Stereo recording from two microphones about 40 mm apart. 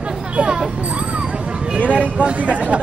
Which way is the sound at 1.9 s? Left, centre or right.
Right.